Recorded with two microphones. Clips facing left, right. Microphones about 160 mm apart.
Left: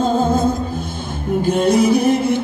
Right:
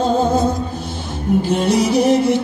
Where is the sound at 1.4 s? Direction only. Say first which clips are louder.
Left 5 dB; 55° left (ahead or behind).